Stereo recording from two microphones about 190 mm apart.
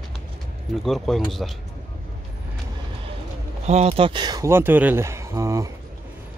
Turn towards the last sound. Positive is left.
turn(degrees=-15)  # may be behind; listen again after turning